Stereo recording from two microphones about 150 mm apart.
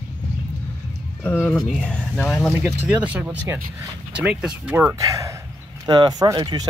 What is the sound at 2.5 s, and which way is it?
Speech, 10° right (ahead or behind).